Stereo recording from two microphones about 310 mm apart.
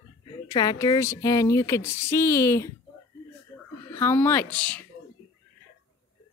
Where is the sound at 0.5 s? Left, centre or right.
Centre.